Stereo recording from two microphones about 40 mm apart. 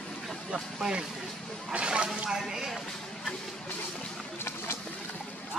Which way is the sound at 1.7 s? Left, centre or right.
Right.